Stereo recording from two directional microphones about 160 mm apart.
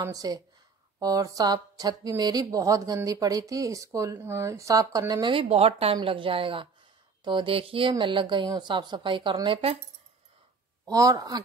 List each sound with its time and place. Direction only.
0.0 s a woman's voice: 20° right (ahead or behind)
10.9 s speech: 20° right (ahead or behind)